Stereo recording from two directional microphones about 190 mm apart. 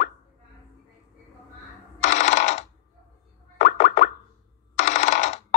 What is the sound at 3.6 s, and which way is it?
Plop, 45° left (ahead or behind).